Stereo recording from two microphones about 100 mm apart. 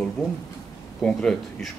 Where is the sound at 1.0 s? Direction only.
5° left (ahead or behind).